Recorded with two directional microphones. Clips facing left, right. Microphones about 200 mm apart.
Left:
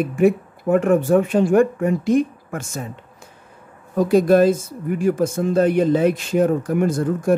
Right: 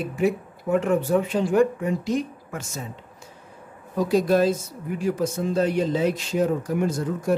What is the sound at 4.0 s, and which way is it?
Speech, 55° left (ahead or behind).